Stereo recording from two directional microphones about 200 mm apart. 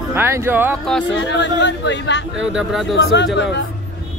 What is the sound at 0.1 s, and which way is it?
Speech, 10° right (ahead or behind).